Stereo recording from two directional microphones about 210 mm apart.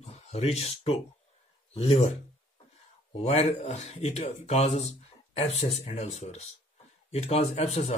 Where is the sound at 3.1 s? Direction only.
30° left (ahead or behind).